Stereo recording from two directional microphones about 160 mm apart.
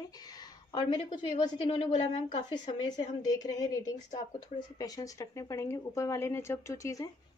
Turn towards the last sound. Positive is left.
turn(degrees=20)  # may be behind; listen again after turning